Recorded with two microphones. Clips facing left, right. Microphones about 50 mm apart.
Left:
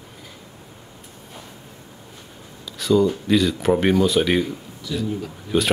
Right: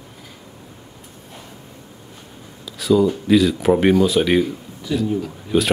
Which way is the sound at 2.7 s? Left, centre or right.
Centre.